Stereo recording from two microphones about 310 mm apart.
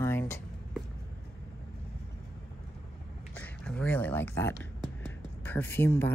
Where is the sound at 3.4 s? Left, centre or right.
Centre.